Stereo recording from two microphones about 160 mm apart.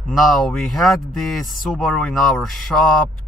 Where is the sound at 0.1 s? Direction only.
Centre (ahead or behind).